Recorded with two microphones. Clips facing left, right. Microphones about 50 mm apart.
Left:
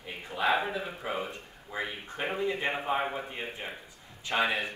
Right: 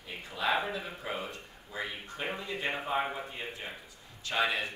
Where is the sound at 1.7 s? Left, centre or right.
Left.